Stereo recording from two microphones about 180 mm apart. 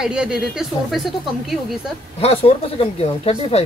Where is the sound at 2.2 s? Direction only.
30° left (ahead or behind).